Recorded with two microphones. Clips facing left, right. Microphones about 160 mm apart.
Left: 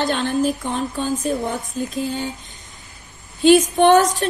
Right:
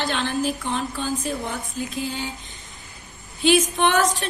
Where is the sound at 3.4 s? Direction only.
45° left (ahead or behind).